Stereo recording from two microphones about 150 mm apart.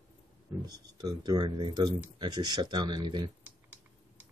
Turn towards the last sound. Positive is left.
turn(degrees=-30)  # may be behind; listen again after turning